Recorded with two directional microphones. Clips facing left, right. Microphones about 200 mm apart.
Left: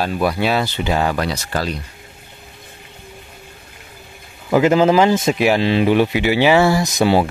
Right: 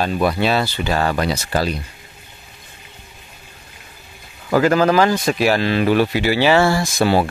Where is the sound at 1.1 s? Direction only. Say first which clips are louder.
Right 2 dB; 5° right (ahead or behind).